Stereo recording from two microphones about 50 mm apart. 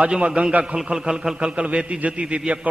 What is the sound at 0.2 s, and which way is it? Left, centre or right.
Speech, right.